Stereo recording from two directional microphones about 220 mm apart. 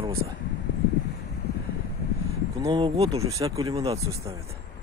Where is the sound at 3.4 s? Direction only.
15° right (ahead or behind).